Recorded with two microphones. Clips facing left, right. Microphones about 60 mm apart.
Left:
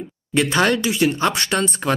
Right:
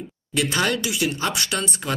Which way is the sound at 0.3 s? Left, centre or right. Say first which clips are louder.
Left 5 dB; left.